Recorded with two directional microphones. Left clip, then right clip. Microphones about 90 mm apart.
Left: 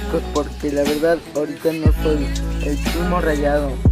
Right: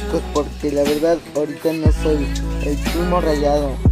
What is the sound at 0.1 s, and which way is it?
Music, centre (ahead or behind).